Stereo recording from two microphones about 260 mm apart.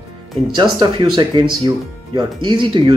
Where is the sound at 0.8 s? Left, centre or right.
Centre.